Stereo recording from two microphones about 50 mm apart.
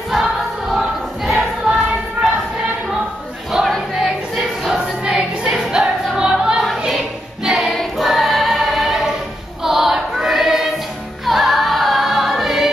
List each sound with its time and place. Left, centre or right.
0.7 s choir: centre
1.7 s a sound: centre
3.5 s a sound: centre
4.7 s music: centre
5.7 s choir: centre
7.4 s choir: centre
11.2 s music: centre